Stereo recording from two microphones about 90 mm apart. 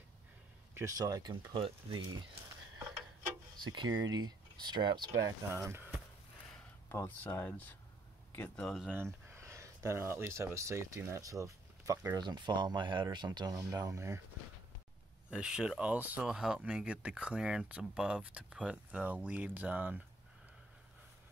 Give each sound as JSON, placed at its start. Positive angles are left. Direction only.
{"t": 0.7, "sound": "speech", "side_deg": -40}
{"t": 1.3, "sound": "speech", "side_deg": -70}
{"t": 3.5, "sound": "speech", "side_deg": -55}
{"t": 5.5, "sound": "speech", "side_deg": -30}
{"t": 6.9, "sound": "speech", "side_deg": 25}
{"t": 8.9, "sound": "speech", "side_deg": -30}
{"t": 12.2, "sound": "speech", "side_deg": -55}
{"t": 15.3, "sound": "speech", "side_deg": -10}
{"t": 16.3, "sound": "speech", "side_deg": -5}